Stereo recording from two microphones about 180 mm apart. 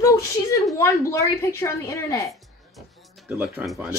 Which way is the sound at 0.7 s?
15° left (ahead or behind).